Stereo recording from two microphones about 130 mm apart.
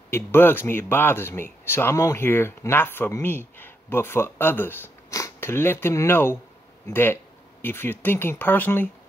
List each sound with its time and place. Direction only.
0.1 s speech: 15° left (ahead or behind)